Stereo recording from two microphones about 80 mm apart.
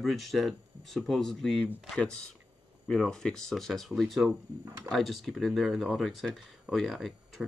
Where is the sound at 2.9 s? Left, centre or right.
Centre.